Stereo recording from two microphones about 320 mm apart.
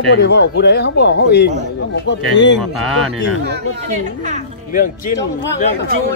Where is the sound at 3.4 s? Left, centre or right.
Right.